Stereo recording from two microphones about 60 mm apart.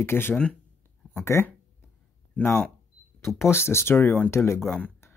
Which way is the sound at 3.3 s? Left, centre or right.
Left.